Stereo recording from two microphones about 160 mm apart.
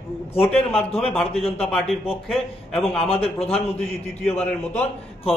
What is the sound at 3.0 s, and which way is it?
Speech, 35° left (ahead or behind).